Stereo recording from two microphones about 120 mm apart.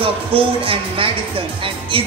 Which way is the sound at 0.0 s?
50° right (ahead or behind).